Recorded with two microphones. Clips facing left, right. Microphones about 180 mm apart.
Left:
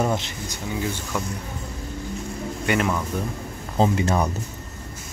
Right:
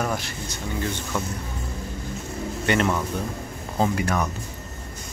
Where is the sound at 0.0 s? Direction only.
25° left (ahead or behind).